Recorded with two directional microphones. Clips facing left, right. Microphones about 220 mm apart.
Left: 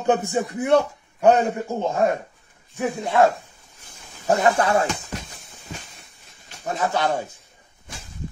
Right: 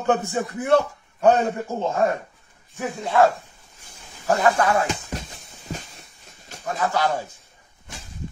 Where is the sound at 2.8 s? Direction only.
15° left (ahead or behind).